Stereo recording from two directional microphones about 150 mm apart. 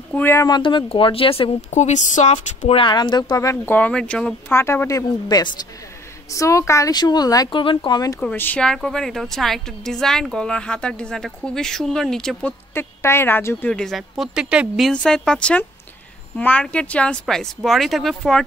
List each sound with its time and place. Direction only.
0.1 s speech: 15° left (ahead or behind)
0.5 s speech: 30° left (ahead or behind)
1.7 s speech: 50° left (ahead or behind)
2.8 s speech: 30° left (ahead or behind); by 4.6 s 5° left (ahead or behind)
4.6 s speech: 15° left (ahead or behind)
8.2 s a woman's voice: 10° left (ahead or behind)
12.7 s speech: 15° left (ahead or behind)
13.7 s a woman's voice: 5° left (ahead or behind)
14.9 s a woman's voice: 5° left (ahead or behind)